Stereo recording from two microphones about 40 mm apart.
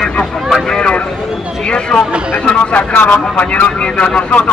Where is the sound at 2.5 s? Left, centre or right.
Left.